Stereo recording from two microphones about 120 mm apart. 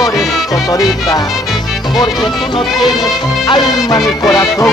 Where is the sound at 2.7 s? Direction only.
Centre (ahead or behind).